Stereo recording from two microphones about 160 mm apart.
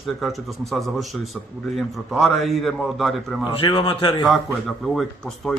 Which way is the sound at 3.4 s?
30° left (ahead or behind).